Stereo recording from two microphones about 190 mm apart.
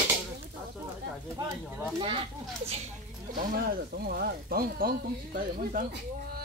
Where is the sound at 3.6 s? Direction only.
50° right (ahead or behind).